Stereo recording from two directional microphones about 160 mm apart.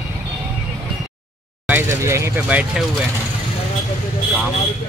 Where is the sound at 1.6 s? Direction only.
15° right (ahead or behind).